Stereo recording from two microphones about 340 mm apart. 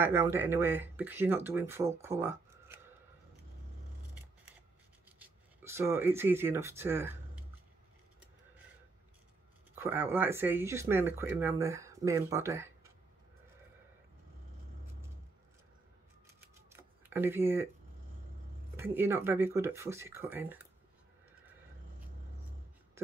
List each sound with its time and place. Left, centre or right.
0.0 s speech: centre
5.2 s speech: centre
9.8 s speech: centre
16.3 s a sound: centre
18.8 s speech: centre